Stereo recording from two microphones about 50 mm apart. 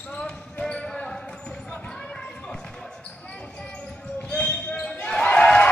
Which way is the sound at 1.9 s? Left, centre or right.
Centre.